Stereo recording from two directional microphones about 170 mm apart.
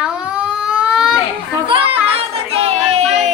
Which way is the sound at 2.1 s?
35° right (ahead or behind).